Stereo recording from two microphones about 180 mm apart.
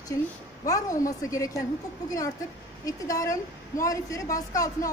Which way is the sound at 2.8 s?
20° left (ahead or behind).